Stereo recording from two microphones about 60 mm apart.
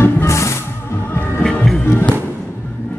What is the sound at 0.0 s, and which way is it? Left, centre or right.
Music, left.